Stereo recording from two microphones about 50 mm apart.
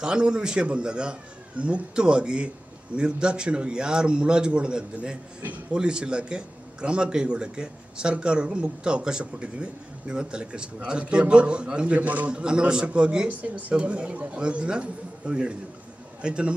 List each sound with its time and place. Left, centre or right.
0.0 s a man's voice: centre
13.3 s speech: right